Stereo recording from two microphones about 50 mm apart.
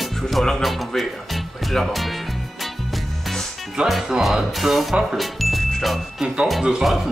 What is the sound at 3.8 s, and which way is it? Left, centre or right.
Speech, centre.